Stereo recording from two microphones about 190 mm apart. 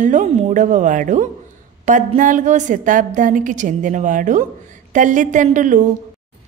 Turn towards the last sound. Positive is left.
turn(degrees=-40)  # may be behind; listen again after turning